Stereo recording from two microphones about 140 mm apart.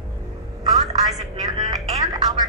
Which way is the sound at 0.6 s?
25° right (ahead or behind).